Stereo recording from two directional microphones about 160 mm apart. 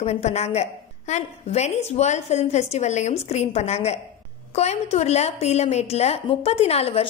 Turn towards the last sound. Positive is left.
turn(degrees=35)  # may be behind; listen again after turning